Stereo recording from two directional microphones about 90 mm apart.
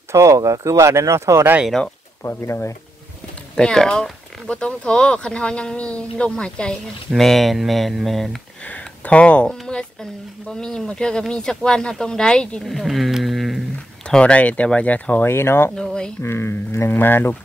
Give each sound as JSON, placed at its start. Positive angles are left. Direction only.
{"t": 0.1, "sound": "speech", "side_deg": -35}
{"t": 2.2, "sound": "speech", "side_deg": 30}
{"t": 3.5, "sound": "speech", "side_deg": 5}
{"t": 8.6, "sound": "speech", "side_deg": 15}
{"t": 14.0, "sound": "speech", "side_deg": 10}
{"t": 15.7, "sound": "speech", "side_deg": 10}
{"t": 16.2, "sound": "speech", "side_deg": 25}